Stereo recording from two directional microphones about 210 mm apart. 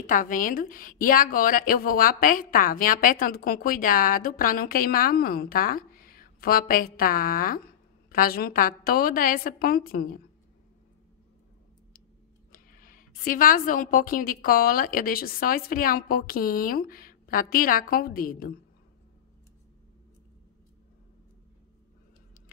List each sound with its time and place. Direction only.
0.0 s a woman's voice: 40° left (ahead or behind)
12.5 s a woman's voice: 40° left (ahead or behind)